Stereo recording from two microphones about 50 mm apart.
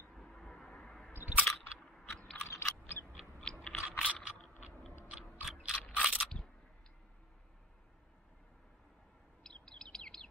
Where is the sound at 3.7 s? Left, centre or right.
Centre.